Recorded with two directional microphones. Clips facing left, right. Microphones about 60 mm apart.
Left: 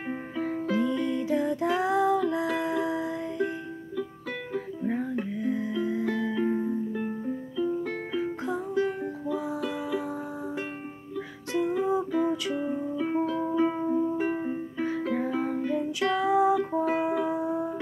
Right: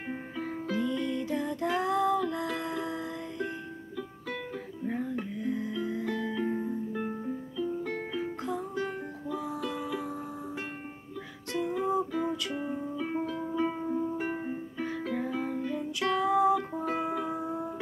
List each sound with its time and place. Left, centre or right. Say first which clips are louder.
0.7 s music: left 3 dB; left; by 9.1 s centre
9.3 s music: left 2 dB; left
11.5 s music: left 3 dB; centre